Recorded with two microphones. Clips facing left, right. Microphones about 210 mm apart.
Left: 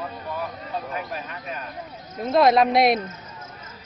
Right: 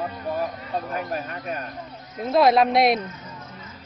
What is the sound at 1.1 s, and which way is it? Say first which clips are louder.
Speech: right 4 dB; 45° right (ahead or behind).